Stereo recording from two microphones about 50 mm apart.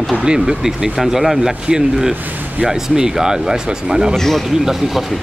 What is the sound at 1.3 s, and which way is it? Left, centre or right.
Speech, centre.